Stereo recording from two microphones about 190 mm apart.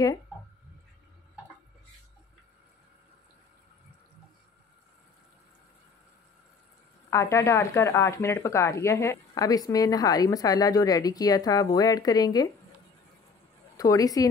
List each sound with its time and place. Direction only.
7.1 s speech: 15° left (ahead or behind)
13.7 s speech: 20° left (ahead or behind)